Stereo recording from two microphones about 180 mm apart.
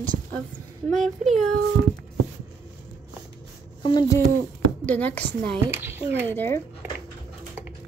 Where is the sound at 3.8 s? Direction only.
25° left (ahead or behind).